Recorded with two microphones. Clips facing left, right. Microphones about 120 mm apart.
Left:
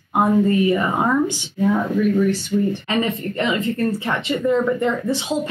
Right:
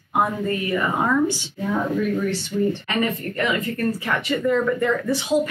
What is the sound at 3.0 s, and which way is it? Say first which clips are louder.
Speech: left 1 dB; 25° left (ahead or behind).